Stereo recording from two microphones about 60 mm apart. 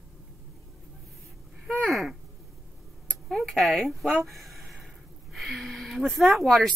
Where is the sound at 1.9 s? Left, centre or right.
Centre.